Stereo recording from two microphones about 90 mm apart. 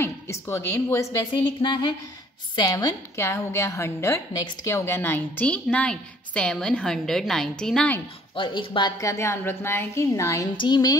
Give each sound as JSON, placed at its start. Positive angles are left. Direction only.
{"t": 0.0, "sound": "a woman's voice", "side_deg": 30}
{"t": 1.6, "sound": "speech", "side_deg": 55}
{"t": 3.2, "sound": "a woman's voice", "side_deg": 30}
{"t": 8.4, "sound": "speech", "side_deg": 65}
{"t": 8.9, "sound": "a woman's voice", "side_deg": 35}
{"t": 10.5, "sound": "speech", "side_deg": 55}